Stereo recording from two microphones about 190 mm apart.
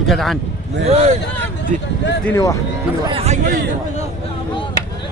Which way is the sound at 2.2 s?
15° left (ahead or behind).